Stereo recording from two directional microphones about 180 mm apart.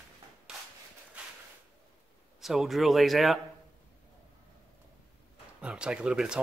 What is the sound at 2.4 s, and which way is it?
Speech, centre (ahead or behind).